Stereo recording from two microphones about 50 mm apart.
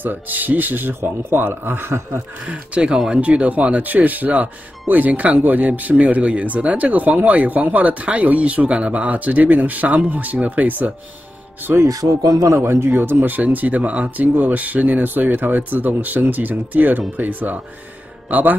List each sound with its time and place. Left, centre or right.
0.0 s speech: right
2.0 s speech: right
2.4 s speech: right
11.8 s speech: right
12.5 s speech: right